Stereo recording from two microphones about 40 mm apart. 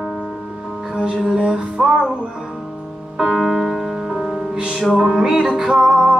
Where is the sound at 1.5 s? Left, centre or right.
Centre.